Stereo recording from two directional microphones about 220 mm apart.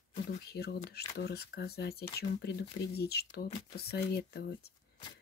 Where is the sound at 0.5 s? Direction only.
45° left (ahead or behind).